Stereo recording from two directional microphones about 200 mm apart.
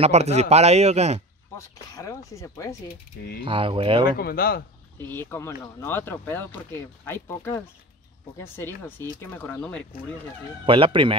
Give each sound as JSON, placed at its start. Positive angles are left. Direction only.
{"t": 0.0, "sound": "a man's voice", "side_deg": -30}
{"t": 2.0, "sound": "speech", "side_deg": 15}
{"t": 3.4, "sound": "speech", "side_deg": -25}
{"t": 4.2, "sound": "speech", "side_deg": 50}
{"t": 5.0, "sound": "speech", "side_deg": 10}
{"t": 10.6, "sound": "speech", "side_deg": -25}